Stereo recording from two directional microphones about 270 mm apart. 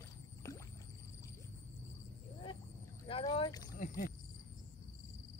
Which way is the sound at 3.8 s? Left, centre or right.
Left.